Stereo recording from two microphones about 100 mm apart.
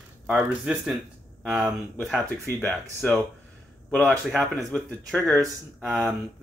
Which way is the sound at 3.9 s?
Centre (ahead or behind).